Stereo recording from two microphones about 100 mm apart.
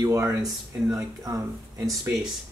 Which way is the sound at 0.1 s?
25° right (ahead or behind).